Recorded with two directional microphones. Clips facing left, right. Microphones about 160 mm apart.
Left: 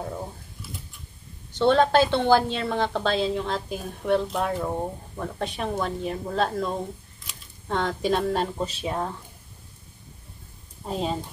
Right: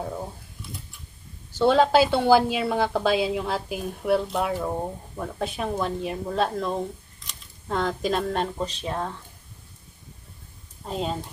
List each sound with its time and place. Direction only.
1.5 s a woman's voice: 5° right (ahead or behind)
10.9 s speech: centre (ahead or behind)